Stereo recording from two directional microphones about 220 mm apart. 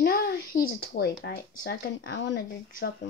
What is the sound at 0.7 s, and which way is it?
Speech, 45° left (ahead or behind).